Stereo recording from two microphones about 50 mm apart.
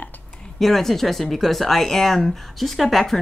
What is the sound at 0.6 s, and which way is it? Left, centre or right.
Speech, centre.